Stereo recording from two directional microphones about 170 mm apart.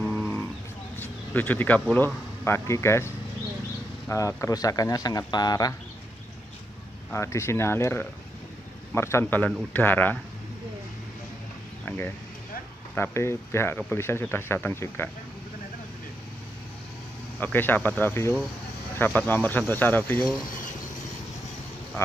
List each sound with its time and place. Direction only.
0.0 s livestock: 10° left (ahead or behind)
1.0 s speech: 10° left (ahead or behind)
4.1 s speech: 15° left (ahead or behind)
7.1 s speech: 15° left (ahead or behind)
12.9 s speech: 15° left (ahead or behind)
17.4 s speech: 10° left (ahead or behind)